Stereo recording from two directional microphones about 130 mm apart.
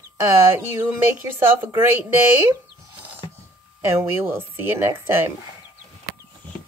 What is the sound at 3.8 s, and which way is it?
Speech, 20° right (ahead or behind).